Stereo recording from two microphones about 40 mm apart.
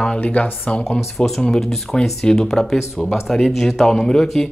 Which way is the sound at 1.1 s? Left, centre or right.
Centre.